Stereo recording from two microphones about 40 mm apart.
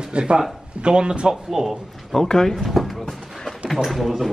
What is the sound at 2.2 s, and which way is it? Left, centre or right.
Speech, centre.